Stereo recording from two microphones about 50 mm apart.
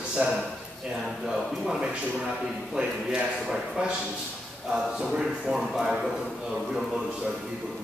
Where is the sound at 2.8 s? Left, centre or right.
Right.